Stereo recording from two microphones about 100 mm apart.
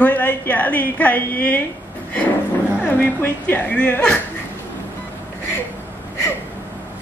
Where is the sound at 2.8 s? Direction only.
20° left (ahead or behind).